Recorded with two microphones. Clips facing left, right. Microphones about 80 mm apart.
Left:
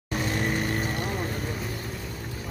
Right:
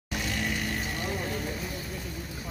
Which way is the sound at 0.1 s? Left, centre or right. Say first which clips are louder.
Left 4 dB; left.